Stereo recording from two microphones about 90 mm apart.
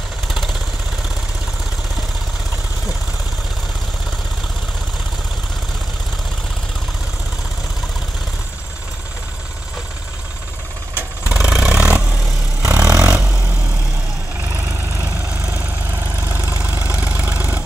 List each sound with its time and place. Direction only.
0.3 s vehicle: centre (ahead or behind)
11.3 s vehicle: 10° right (ahead or behind)
12.6 s vehicle: 35° right (ahead or behind)
14.5 s vehicle: 35° right (ahead or behind)
15.5 s vehicle: 20° right (ahead or behind)
17.0 s vehicle: 20° right (ahead or behind)